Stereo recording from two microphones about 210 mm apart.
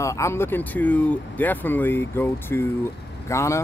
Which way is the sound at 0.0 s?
15° left (ahead or behind).